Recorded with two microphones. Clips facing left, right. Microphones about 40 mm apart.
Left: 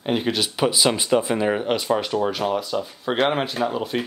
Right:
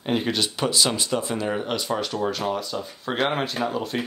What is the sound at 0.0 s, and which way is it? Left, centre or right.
Speech, centre.